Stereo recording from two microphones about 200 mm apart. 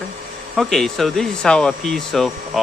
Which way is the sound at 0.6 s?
Centre (ahead or behind).